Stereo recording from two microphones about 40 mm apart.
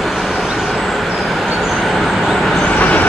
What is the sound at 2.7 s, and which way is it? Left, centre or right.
Vehicle, left.